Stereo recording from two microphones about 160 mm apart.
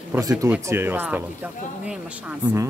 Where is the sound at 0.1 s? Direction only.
20° right (ahead or behind).